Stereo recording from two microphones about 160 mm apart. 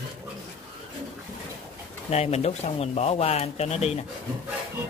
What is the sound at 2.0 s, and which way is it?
Speech, 40° left (ahead or behind).